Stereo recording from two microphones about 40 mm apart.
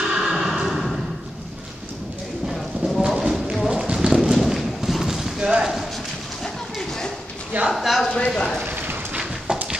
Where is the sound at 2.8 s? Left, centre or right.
Right.